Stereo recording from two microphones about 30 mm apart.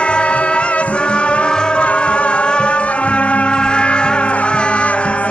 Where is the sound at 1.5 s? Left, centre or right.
Left.